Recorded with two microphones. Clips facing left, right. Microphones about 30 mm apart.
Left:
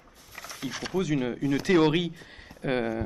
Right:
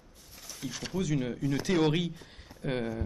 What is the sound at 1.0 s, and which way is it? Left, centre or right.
Speech, left.